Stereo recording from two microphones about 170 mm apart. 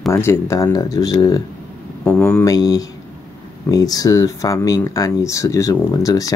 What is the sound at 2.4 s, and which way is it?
Speech, 20° left (ahead or behind).